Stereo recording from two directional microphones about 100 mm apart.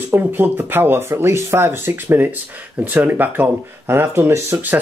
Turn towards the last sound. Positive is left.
turn(degrees=-20)  # may be behind; listen again after turning